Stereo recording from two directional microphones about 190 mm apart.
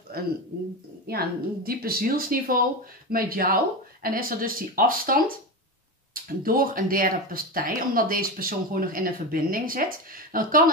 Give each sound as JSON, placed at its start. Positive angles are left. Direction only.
{"t": 1.0, "sound": "speech", "side_deg": -55}
{"t": 6.2, "sound": "speech", "side_deg": -50}